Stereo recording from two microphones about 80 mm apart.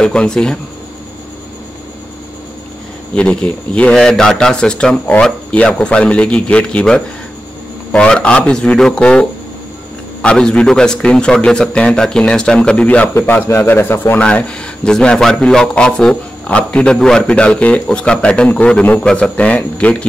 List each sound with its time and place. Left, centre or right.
0.0 s a man's voice: centre
3.2 s a man's voice: centre; by 14.2 s left
14.9 s a man's voice: centre